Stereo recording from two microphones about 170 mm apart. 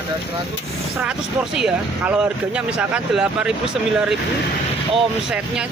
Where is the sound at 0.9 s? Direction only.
5° right (ahead or behind).